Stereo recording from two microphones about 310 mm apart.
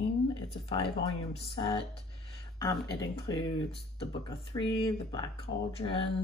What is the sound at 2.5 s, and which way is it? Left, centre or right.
Speech, centre.